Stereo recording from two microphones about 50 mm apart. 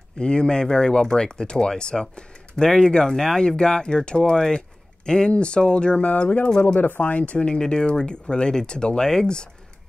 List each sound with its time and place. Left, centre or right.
0.2 s speech: centre
6.8 s speech: left; by 9.5 s centre